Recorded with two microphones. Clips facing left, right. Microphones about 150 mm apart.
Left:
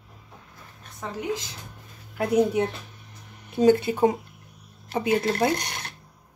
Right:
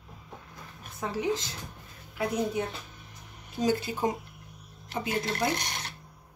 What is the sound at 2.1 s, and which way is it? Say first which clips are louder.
Speech: left 8 dB; 70° left (ahead or behind).